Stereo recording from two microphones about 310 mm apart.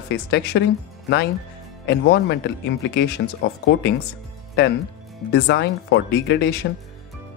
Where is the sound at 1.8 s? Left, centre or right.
Left.